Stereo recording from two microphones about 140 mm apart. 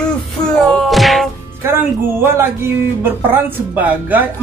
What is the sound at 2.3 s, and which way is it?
Speech, 15° right (ahead or behind).